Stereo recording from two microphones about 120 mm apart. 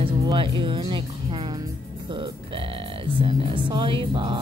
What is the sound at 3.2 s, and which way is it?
Speech, 45° right (ahead or behind).